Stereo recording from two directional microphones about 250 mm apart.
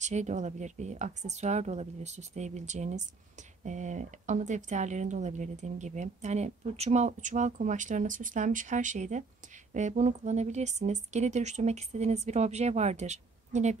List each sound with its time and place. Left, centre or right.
0.0 s speech: right